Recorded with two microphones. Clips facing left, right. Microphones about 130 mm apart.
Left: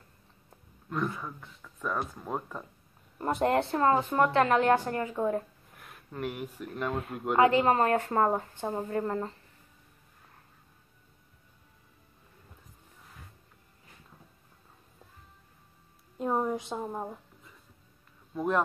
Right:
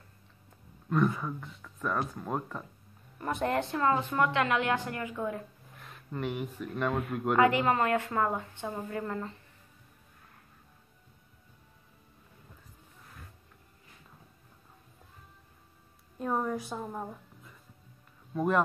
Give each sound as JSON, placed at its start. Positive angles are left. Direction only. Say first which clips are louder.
{"t": 0.8, "sound": "speech", "louder": "right 5 dB", "side_deg": 0}
{"t": 3.2, "sound": "speech", "louder": "left 4 dB", "side_deg": 30}
{"t": 5.8, "sound": "speech", "louder": "even", "side_deg": 5}
{"t": 7.3, "sound": "speech", "louder": "left 3 dB", "side_deg": 30}
{"t": 16.2, "sound": "a sound", "louder": "left 2 dB", "side_deg": 20}
{"t": 18.3, "sound": "speech", "louder": "right 1 dB", "side_deg": 0}